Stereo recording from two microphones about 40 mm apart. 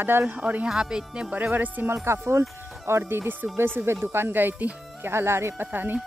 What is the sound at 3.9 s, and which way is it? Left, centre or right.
Speech, right.